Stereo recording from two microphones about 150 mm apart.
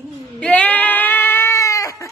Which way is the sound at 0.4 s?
10° left (ahead or behind).